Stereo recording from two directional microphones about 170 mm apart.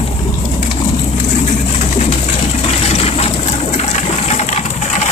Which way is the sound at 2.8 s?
35° left (ahead or behind).